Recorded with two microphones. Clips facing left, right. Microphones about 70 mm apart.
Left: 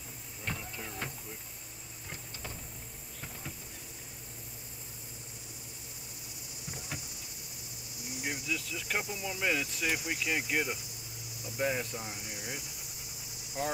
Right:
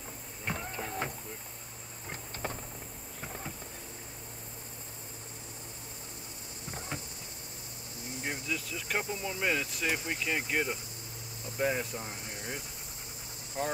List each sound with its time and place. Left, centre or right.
0.6 s vehicle: right
2.4 s a sound: right
6.7 s a sound: right
8.0 s cricket: centre
8.5 s speech: centre
9.0 s speech: centre
12.0 s speech: centre